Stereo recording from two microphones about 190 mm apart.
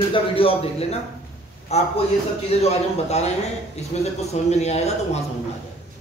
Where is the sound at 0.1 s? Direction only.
30° left (ahead or behind).